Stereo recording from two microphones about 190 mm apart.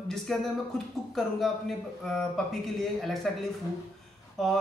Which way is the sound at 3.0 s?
Centre (ahead or behind).